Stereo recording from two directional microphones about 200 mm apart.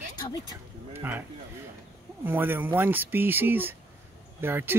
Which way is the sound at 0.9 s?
10° right (ahead or behind).